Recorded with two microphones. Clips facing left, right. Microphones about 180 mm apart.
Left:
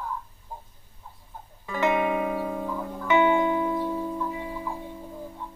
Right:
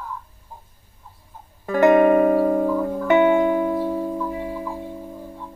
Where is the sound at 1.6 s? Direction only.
50° right (ahead or behind).